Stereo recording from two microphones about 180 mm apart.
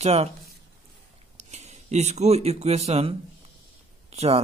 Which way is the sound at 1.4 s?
40° right (ahead or behind).